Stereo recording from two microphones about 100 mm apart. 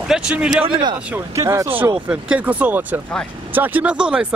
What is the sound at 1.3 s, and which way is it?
Speech, 30° right (ahead or behind).